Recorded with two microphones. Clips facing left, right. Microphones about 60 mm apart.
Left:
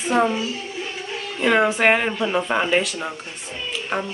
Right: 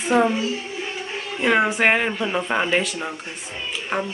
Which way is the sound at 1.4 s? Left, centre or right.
Centre.